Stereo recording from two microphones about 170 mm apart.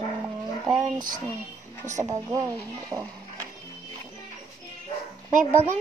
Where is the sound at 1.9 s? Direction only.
20° right (ahead or behind).